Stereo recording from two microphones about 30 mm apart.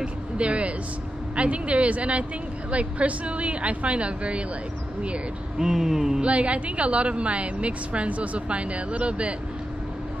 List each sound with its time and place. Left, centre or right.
0.0 s a woman's voice: right
5.6 s speech: centre
6.2 s a woman's voice: right